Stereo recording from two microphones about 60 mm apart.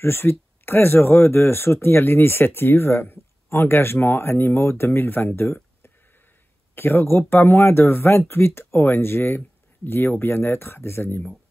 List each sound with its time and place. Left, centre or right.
0.0 s speech: left